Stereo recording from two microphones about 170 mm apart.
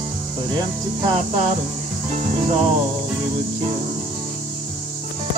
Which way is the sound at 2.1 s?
40° right (ahead or behind).